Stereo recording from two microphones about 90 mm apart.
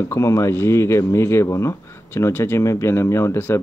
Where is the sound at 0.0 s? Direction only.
30° left (ahead or behind).